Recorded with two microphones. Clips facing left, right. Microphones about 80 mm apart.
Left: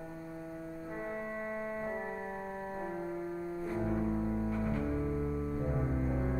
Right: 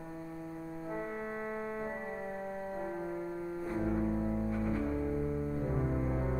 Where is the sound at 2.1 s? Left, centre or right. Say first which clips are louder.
Right 1 dB; centre.